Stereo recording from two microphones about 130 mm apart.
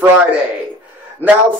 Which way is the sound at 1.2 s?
15° left (ahead or behind).